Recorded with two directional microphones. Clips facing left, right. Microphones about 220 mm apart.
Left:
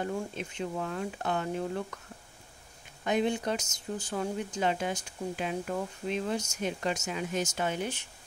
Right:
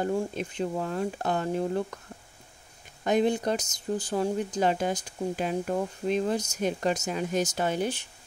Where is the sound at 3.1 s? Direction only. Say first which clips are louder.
Right 4 dB; 40° right (ahead or behind).